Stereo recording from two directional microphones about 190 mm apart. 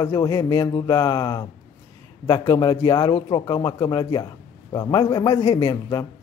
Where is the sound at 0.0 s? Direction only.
20° left (ahead or behind).